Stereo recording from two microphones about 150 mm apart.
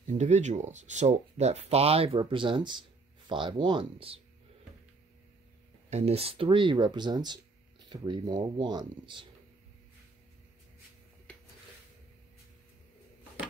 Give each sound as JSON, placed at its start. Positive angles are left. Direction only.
{"t": 0.1, "sound": "speech", "side_deg": -50}
{"t": 5.9, "sound": "speech", "side_deg": -45}
{"t": 11.3, "sound": "a sound", "side_deg": 10}